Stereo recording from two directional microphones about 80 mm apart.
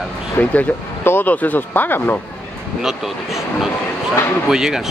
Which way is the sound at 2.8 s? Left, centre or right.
Centre.